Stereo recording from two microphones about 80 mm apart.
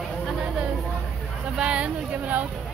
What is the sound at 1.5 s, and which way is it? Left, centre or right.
Speech, centre.